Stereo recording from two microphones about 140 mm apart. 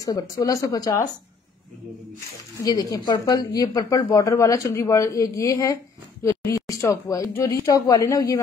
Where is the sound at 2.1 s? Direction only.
25° left (ahead or behind).